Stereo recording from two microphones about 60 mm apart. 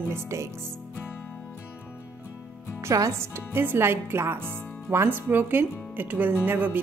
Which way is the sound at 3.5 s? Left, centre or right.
Right.